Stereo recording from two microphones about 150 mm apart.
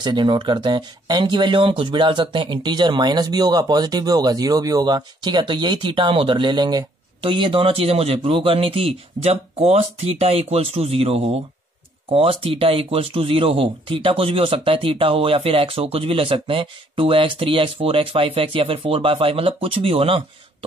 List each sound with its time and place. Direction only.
0.0 s speech: 30° right (ahead or behind)